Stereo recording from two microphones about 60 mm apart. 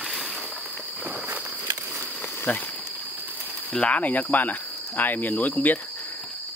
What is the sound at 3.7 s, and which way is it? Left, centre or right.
Speech, left.